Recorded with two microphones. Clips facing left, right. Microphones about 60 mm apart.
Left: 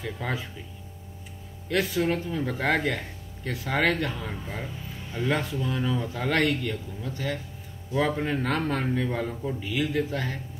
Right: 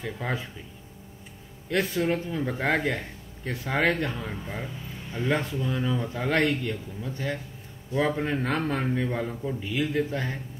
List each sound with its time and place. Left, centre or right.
0.2 s speech: centre
1.7 s speech: centre
4.3 s speech: centre
9.3 s speech: centre
9.6 s speech: centre